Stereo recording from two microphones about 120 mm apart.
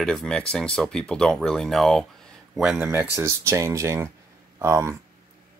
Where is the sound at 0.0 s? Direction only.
5° left (ahead or behind).